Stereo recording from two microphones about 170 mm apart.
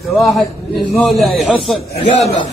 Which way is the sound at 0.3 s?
Centre (ahead or behind).